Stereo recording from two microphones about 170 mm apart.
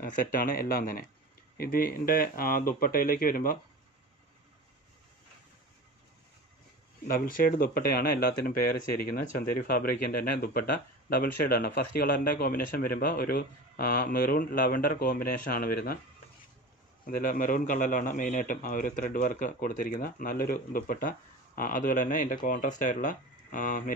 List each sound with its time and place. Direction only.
0.0 s speech: 55° left (ahead or behind)
7.1 s speech: 55° left (ahead or behind)
17.0 s a man's voice: 55° left (ahead or behind)